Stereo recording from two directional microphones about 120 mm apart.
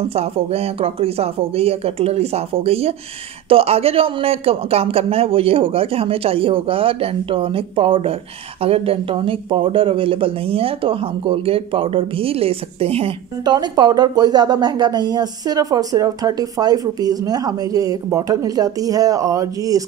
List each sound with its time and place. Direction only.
0.1 s a man's voice: 55° right (ahead or behind)
13.4 s speech: 35° right (ahead or behind)